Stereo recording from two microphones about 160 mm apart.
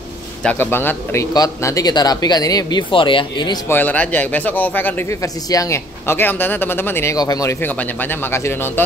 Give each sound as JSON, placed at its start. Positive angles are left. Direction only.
{"t": 0.4, "sound": "speech", "side_deg": 10}
{"t": 3.6, "sound": "speech", "side_deg": 10}
{"t": 7.6, "sound": "speech", "side_deg": 10}